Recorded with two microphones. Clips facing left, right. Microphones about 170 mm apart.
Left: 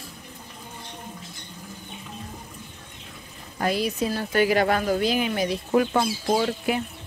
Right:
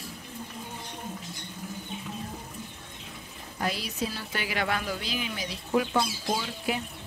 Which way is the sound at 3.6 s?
50° left (ahead or behind).